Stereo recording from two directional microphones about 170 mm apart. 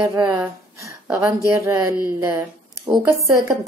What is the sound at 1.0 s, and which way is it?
Speech, 15° right (ahead or behind).